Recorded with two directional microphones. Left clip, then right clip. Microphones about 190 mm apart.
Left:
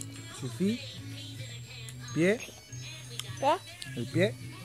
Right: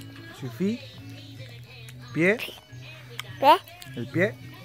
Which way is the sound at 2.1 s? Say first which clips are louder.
Right 5 dB; centre (ahead or behind).